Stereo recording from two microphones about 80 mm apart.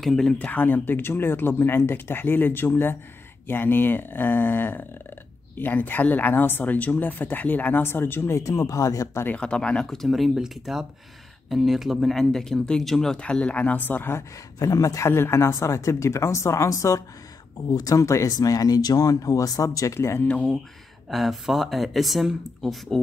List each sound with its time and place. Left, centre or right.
0.0 s speech: centre; by 9.2 s left
9.2 s speech: centre
14.6 s speech: left
20.0 s speech: left
20.2 s speech: centre
21.1 s speech: centre